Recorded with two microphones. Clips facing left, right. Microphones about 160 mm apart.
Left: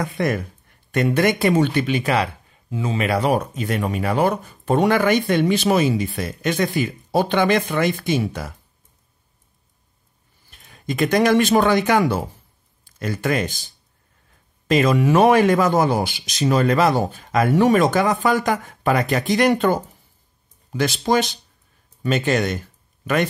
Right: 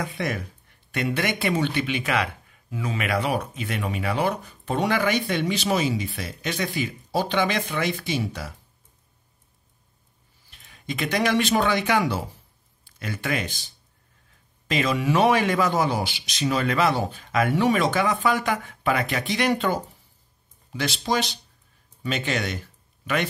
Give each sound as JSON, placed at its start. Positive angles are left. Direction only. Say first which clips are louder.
{"t": 0.0, "sound": "speech", "louder": "left 6 dB", "side_deg": 50}
{"t": 10.5, "sound": "speech", "louder": "left 5 dB", "side_deg": 45}
{"t": 14.7, "sound": "speech", "louder": "left 7 dB", "side_deg": 45}